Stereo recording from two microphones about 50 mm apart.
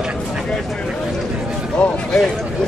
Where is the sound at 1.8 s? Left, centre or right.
Left.